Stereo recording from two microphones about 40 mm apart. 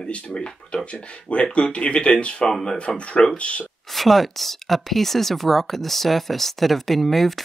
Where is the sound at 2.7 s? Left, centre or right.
Left.